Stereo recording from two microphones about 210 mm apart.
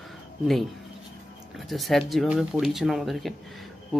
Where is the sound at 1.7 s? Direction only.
Centre (ahead or behind).